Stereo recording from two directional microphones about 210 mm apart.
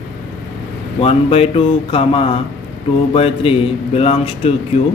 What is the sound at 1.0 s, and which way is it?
A man's voice, 30° left (ahead or behind).